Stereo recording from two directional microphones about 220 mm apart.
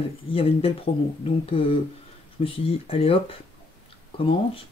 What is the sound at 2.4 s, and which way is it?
Speech, 25° left (ahead or behind).